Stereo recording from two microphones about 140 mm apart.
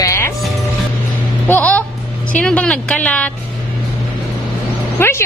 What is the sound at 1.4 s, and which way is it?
A woman's voice, 15° left (ahead or behind).